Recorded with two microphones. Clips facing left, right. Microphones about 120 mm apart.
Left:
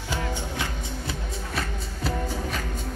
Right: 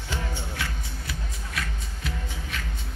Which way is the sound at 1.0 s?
35° left (ahead or behind).